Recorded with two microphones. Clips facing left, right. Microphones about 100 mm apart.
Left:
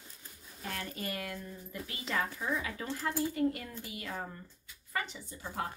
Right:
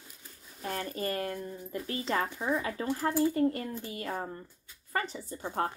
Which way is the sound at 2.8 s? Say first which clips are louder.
Right 6 dB; 35° right (ahead or behind).